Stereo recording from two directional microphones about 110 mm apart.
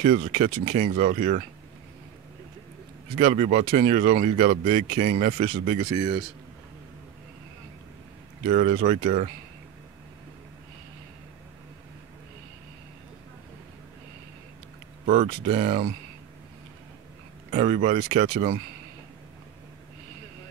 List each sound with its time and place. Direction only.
0.0 s speech: 90° right
3.2 s speech: 80° right
5.9 s a man's voice: 40° right (ahead or behind)
8.5 s speech: 90° right
15.2 s speech: 90° right
17.5 s speech: 90° right